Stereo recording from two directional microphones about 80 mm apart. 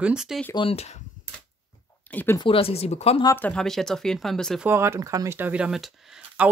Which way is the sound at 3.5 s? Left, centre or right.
Centre.